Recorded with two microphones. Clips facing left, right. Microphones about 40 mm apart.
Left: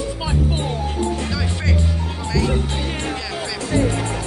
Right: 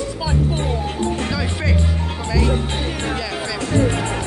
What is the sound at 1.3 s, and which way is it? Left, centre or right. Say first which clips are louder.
Speech: right 2 dB; centre.